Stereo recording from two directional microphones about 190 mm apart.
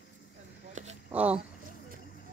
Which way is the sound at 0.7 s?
40° right (ahead or behind).